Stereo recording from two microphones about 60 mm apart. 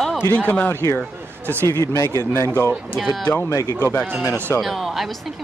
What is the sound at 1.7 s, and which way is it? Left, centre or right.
Speech, left.